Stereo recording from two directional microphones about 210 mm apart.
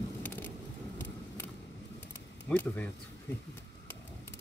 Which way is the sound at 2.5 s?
5° left (ahead or behind).